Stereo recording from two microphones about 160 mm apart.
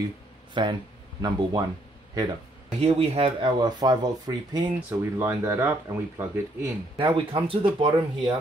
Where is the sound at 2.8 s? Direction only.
35° right (ahead or behind).